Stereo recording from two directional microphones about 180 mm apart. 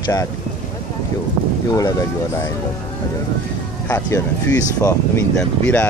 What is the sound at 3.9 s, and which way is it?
Speech, 15° left (ahead or behind).